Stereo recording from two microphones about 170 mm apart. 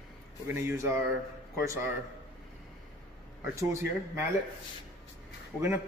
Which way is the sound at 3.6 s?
15° right (ahead or behind).